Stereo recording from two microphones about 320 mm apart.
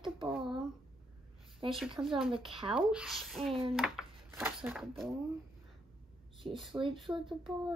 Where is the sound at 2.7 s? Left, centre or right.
Centre.